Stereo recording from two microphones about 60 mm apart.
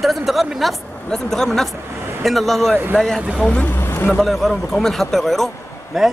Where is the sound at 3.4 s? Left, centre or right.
Left.